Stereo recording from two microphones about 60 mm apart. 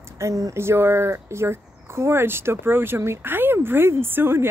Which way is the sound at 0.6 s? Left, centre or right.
Right.